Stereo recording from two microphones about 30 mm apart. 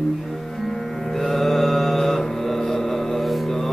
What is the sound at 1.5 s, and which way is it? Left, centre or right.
Mantra, centre.